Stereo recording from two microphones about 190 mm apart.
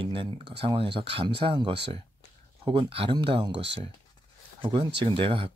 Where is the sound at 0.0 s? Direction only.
25° right (ahead or behind).